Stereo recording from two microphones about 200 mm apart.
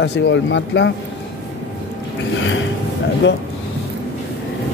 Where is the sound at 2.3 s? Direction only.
70° left (ahead or behind).